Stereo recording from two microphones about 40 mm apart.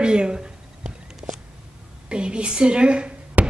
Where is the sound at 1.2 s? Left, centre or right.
Right.